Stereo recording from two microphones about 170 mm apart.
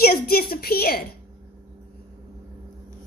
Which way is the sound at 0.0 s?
65° left (ahead or behind).